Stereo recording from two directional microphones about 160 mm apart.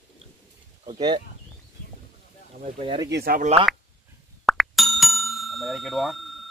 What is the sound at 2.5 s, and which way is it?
Speech, 35° right (ahead or behind).